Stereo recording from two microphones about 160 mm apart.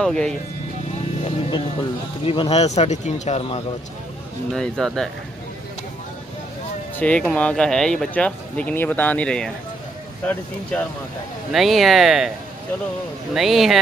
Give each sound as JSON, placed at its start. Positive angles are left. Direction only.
{"t": 0.0, "sound": "speech", "side_deg": 5}
{"t": 2.2, "sound": "speech", "side_deg": 35}
{"t": 4.5, "sound": "speech", "side_deg": 0}
{"t": 7.0, "sound": "speech", "side_deg": 5}
{"t": 13.3, "sound": "speech", "side_deg": 0}